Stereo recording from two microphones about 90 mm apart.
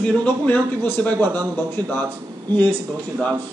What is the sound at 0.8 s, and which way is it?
Speech, 25° left (ahead or behind).